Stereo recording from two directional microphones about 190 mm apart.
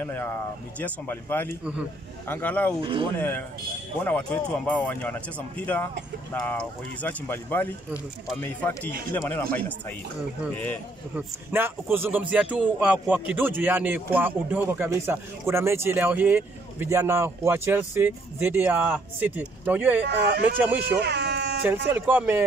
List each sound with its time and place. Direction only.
0.0 s speech: 15° left (ahead or behind)
2.8 s speech: 25° right (ahead or behind)
3.2 s speech: 10° left (ahead or behind)
11.1 s a man's voice: 10° right (ahead or behind)
21.0 s a sound: 65° right (ahead or behind)
21.8 s a man's voice: 10° right (ahead or behind)